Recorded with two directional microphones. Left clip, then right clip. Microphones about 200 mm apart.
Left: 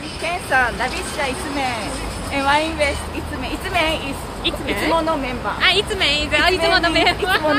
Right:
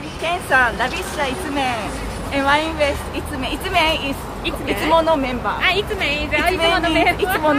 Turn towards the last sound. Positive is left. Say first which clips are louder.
# even
turn(degrees=20)  # may be behind; listen again after turning